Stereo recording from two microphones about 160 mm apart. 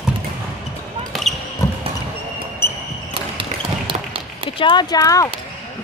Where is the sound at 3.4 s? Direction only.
35° right (ahead or behind).